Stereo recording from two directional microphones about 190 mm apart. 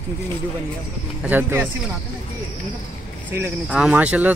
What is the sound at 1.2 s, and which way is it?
Speech, 10° right (ahead or behind).